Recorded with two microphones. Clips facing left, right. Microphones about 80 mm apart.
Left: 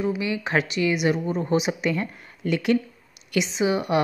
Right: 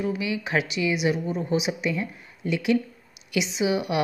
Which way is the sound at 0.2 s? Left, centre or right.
Left.